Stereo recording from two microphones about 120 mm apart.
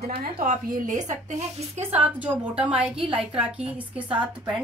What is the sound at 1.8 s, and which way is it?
A woman's voice, 15° right (ahead or behind).